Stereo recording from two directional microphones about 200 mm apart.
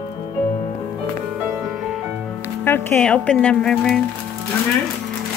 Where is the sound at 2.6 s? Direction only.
10° left (ahead or behind).